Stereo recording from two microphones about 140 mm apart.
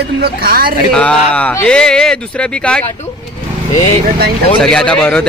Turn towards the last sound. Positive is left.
turn(degrees=5)  # may be behind; listen again after turning